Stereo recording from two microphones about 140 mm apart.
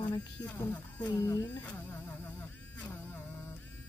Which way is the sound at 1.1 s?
20° left (ahead or behind).